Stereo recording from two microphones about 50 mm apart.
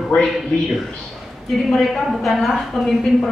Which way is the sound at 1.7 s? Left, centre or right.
Centre.